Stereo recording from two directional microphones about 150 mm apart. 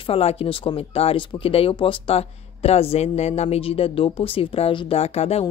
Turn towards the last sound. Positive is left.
turn(degrees=45)  # may be behind; listen again after turning